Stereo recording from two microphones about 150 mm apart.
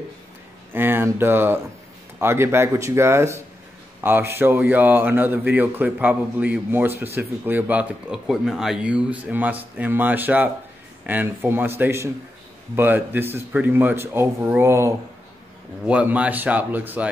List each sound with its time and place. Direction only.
0.7 s speech: 15° right (ahead or behind)